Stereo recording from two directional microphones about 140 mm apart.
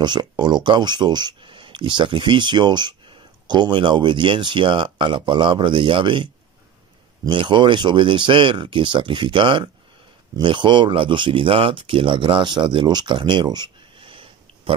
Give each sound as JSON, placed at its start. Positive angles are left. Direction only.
{"t": 0.0, "sound": "speech", "side_deg": -30}
{"t": 7.2, "sound": "speech", "side_deg": -35}